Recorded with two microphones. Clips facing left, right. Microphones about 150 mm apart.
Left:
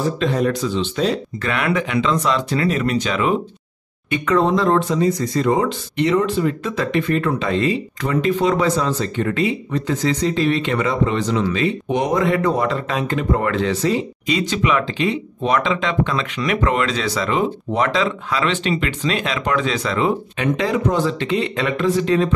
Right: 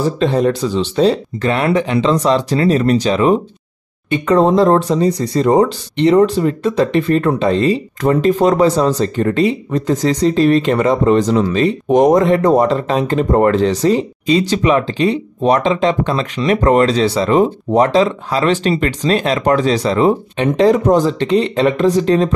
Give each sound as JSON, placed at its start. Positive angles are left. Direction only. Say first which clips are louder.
{"t": 0.2, "sound": "speech", "louder": "right 6 dB", "side_deg": -30}